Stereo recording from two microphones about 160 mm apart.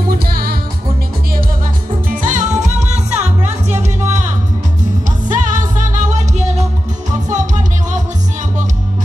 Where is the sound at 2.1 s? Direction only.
55° right (ahead or behind).